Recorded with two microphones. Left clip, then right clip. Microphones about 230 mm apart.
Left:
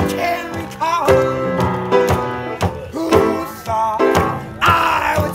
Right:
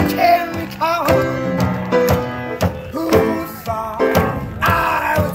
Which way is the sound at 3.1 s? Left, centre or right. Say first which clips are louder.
Left 1 dB; centre.